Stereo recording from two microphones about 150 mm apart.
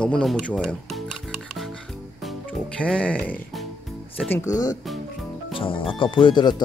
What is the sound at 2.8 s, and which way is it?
Speech, 10° left (ahead or behind).